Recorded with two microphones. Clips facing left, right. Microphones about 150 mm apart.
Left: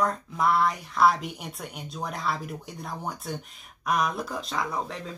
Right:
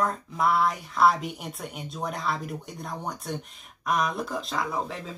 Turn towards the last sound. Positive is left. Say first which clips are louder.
# right 1 dB
turn(degrees=0)  # may be behind; listen again after turning